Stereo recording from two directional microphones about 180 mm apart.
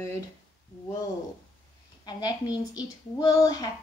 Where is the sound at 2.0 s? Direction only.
20° left (ahead or behind).